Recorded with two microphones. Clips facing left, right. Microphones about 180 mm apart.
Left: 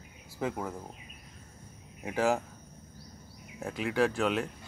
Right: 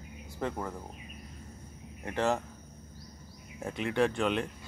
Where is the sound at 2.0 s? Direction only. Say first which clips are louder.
Left 2 dB; 5° left (ahead or behind).